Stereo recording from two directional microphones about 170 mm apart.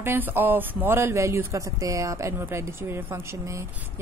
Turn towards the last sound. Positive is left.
turn(degrees=-15)  # may be behind; listen again after turning